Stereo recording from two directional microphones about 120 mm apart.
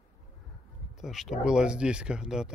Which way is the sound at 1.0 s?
Centre (ahead or behind).